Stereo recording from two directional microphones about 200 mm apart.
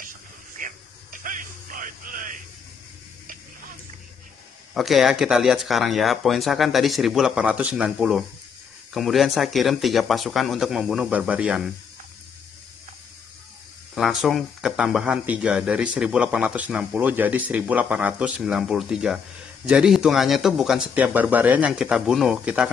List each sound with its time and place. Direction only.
0.6 s a sound: 40° right (ahead or behind)
1.2 s music: 40° right (ahead or behind)
4.7 s speech: centre (ahead or behind)
13.9 s speech: centre (ahead or behind)